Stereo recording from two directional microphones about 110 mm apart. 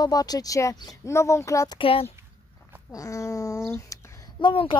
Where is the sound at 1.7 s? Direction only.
55° left (ahead or behind).